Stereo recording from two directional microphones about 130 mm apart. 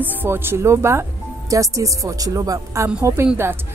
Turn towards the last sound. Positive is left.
turn(degrees=-20)  # may be behind; listen again after turning